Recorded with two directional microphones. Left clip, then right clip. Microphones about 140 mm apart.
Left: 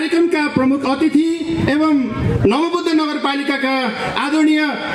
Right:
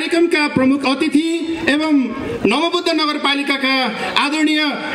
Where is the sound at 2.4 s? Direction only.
20° right (ahead or behind).